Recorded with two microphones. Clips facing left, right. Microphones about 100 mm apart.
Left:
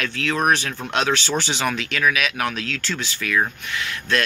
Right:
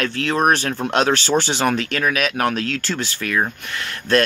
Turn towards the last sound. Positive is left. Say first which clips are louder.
# right 5 dB
turn(degrees=-45)  # may be behind; listen again after turning